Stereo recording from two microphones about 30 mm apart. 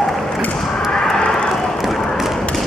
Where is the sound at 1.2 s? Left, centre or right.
Left.